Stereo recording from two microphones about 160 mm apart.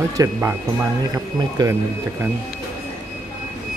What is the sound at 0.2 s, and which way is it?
Speech, 15° right (ahead or behind).